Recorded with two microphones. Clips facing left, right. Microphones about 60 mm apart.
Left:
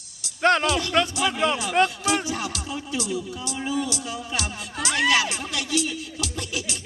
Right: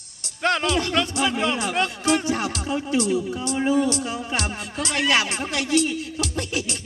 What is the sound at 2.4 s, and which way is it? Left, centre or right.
Speech, right.